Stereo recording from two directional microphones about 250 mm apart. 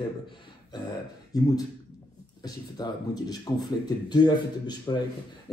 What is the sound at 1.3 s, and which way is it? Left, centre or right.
Speech, centre.